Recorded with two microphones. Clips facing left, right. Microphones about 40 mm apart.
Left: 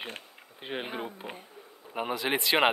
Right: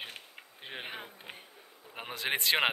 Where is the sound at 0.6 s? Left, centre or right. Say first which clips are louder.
Left 7 dB; centre.